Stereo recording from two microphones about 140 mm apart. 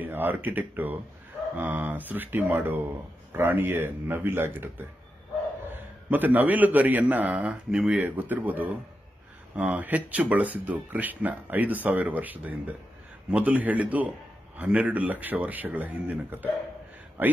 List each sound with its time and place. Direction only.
0.0 s speech: 15° right (ahead or behind)
6.0 s speech: 10° right (ahead or behind)